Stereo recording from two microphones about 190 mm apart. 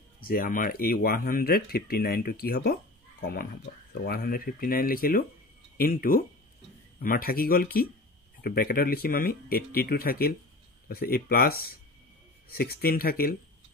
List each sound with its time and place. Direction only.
0.2 s speech: 50° left (ahead or behind)